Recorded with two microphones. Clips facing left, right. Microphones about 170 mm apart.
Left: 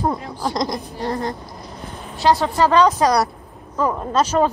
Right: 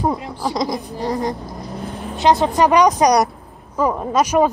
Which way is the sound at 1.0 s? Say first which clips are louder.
Right 2 dB; 15° right (ahead or behind).